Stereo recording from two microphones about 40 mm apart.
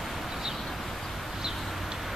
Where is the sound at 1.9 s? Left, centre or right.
Centre.